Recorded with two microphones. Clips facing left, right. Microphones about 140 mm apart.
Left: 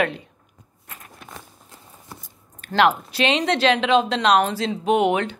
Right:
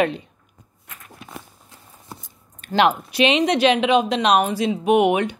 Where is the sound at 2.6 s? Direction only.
15° right (ahead or behind).